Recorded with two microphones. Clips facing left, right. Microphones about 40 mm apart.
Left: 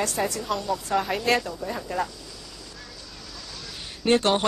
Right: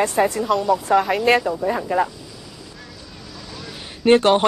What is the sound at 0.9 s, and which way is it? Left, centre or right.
Speech, centre.